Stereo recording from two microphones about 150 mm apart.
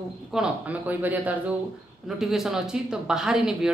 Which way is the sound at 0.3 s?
5° right (ahead or behind).